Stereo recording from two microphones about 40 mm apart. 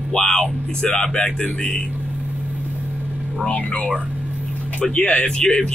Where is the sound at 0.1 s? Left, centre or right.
Centre.